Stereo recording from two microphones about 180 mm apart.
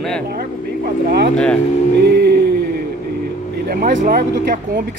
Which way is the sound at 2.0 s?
65° right (ahead or behind).